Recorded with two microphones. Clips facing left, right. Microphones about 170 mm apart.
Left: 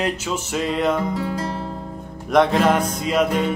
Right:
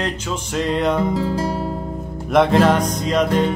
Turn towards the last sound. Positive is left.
turn(degrees=5)  # may be behind; listen again after turning